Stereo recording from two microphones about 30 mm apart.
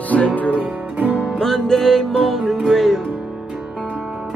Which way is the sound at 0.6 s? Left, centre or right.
Right.